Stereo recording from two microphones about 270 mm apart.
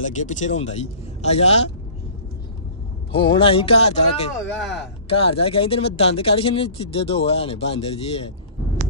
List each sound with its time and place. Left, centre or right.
0.0 s speech: left
3.1 s speech: centre